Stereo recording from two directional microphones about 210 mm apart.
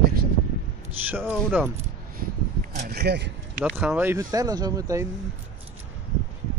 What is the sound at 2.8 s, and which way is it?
Speech, 50° right (ahead or behind).